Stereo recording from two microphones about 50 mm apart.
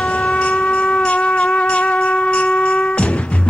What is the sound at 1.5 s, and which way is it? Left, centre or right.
Wind instrument, left.